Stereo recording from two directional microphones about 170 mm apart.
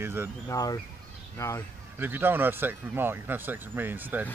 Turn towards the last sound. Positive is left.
turn(degrees=-10)  # may be behind; listen again after turning